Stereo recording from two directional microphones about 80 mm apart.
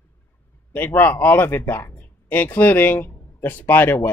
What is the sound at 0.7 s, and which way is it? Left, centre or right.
Speech, left.